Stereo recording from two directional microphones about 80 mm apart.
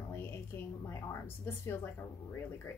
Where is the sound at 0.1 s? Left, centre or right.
Left.